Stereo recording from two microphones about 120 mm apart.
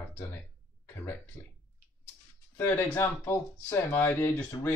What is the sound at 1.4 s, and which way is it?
Speech, 20° left (ahead or behind).